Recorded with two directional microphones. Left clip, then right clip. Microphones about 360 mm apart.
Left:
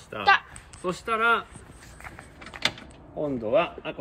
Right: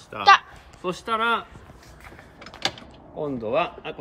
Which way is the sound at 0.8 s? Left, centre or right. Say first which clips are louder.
Right 1 dB; right.